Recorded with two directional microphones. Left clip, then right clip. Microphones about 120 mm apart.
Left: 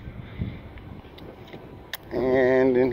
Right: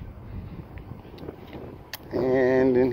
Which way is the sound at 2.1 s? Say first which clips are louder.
Left 1 dB; 40° right (ahead or behind).